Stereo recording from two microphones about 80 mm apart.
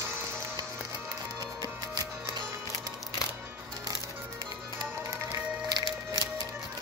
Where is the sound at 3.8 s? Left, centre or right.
Right.